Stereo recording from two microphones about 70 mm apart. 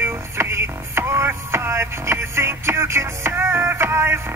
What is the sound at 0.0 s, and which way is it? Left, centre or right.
Radio, right.